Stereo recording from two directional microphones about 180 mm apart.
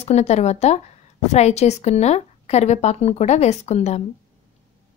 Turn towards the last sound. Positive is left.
turn(degrees=35)  # may be behind; listen again after turning